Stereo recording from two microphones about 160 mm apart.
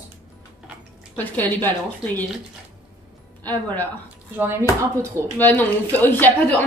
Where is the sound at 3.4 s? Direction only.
10° left (ahead or behind).